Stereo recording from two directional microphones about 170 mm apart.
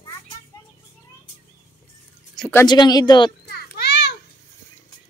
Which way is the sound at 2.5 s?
25° left (ahead or behind).